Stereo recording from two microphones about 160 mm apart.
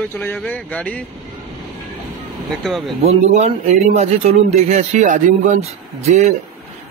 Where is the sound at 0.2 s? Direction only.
10° left (ahead or behind).